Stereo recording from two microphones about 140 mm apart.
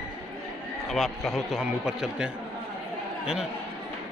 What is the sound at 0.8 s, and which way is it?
A man's voice, centre (ahead or behind).